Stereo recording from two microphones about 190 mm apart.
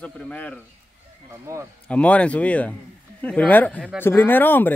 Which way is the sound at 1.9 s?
5° left (ahead or behind).